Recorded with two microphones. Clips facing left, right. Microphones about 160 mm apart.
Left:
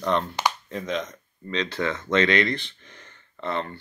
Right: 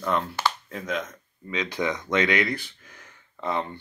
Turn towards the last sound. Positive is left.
turn(degrees=-15)  # may be behind; listen again after turning